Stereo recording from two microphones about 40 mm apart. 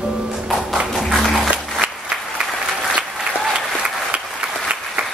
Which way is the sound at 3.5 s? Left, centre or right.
Right.